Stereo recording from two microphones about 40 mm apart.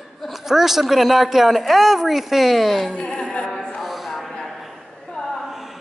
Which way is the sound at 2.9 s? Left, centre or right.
Centre.